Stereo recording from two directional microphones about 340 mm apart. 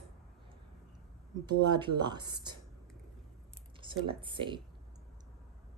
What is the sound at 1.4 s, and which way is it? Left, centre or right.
Speech, centre.